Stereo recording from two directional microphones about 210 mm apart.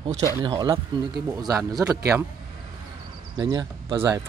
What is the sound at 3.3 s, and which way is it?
Speech, 20° right (ahead or behind).